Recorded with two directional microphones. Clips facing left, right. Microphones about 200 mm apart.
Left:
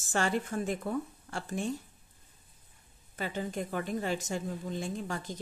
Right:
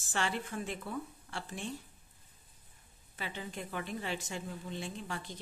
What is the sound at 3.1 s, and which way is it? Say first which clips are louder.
A woman's voice: left 7 dB; 45° left (ahead or behind).